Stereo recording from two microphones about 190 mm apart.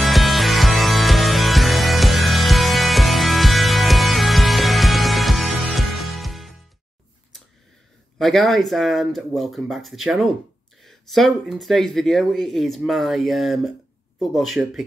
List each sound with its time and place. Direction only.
0.0 s music: centre (ahead or behind)
8.2 s speech: centre (ahead or behind)